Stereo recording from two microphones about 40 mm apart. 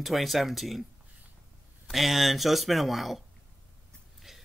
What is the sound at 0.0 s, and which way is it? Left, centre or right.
Speech, centre.